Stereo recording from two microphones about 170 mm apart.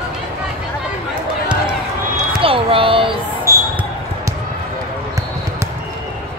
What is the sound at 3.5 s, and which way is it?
Basketball bounce, 15° right (ahead or behind).